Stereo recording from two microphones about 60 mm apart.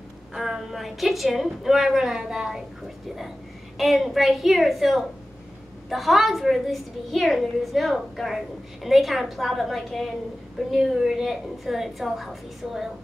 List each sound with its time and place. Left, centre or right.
0.3 s a woman's voice: centre
3.7 s a woman's voice: centre